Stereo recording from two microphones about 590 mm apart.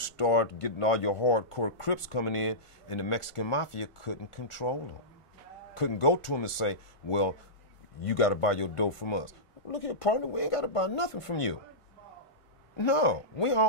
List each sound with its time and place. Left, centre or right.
0.0 s speech: left
5.8 s speech: left
9.7 s speech: left
12.7 s speech: left